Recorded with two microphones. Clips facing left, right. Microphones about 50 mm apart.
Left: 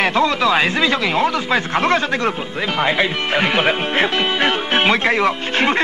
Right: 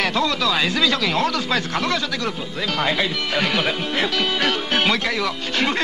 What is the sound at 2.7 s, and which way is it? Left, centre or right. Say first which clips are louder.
Speech: left 4 dB; left.